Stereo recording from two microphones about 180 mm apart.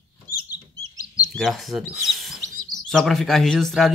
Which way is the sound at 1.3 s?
Centre (ahead or behind).